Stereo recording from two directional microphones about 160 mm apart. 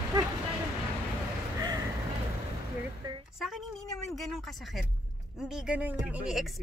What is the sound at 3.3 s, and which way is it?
A woman's voice, centre (ahead or behind).